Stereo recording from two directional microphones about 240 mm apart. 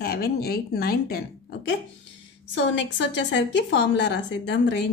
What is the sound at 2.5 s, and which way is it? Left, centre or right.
A woman's voice, left.